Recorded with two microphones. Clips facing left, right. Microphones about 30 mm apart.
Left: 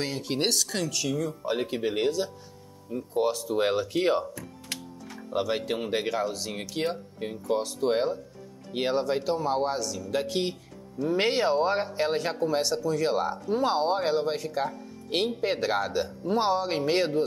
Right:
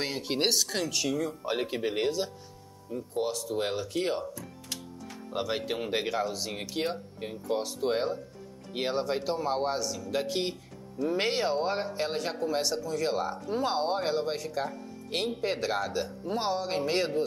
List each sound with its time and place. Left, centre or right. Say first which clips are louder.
0.0 s speech: left 1 dB; centre
3.2 s speech: left 5 dB; centre
5.3 s speech: left 4 dB; centre